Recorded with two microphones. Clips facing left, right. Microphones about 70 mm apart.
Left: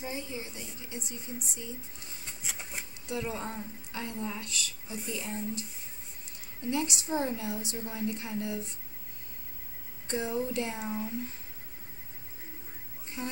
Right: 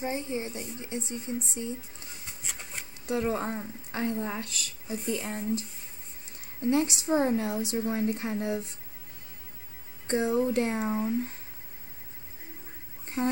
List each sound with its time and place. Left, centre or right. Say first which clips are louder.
0.0 s a woman's voice: right 6 dB; right
3.1 s a woman's voice: right 6 dB; right
6.6 s a woman's voice: right 6 dB; right
10.0 s a woman's voice: right 6 dB; right
13.2 s a woman's voice: right 9 dB; right